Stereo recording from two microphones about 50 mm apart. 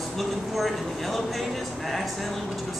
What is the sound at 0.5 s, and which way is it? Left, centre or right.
Speech, centre.